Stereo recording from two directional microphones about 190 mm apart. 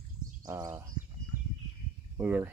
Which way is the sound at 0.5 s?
15° right (ahead or behind).